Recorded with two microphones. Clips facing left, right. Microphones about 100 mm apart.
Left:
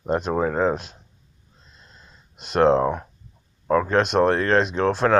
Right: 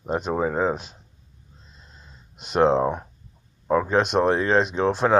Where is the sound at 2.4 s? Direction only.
5° right (ahead or behind).